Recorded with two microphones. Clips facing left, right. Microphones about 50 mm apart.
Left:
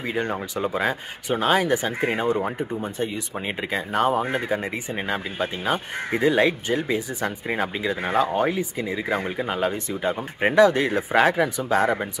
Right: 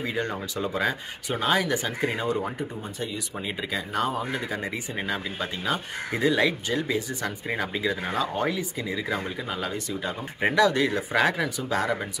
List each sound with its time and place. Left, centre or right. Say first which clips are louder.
0.0 s speech: left 3 dB; centre; by 4.6 s left
4.9 s speech: left 4 dB; left
8.0 s speech: left 5 dB; left